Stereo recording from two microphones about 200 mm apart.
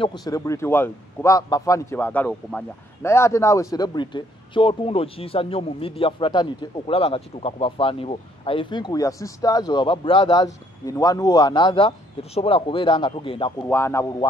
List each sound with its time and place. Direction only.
0.0 s a man's voice: 20° left (ahead or behind)
13.6 s speech: 10° left (ahead or behind)